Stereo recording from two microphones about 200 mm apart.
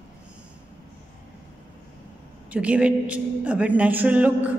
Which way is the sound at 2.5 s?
5° right (ahead or behind).